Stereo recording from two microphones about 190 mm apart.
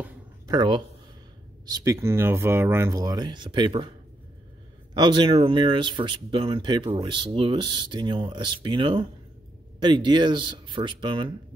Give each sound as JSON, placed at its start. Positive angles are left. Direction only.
{"t": 0.5, "sound": "speech", "side_deg": -25}
{"t": 4.9, "sound": "speech", "side_deg": -25}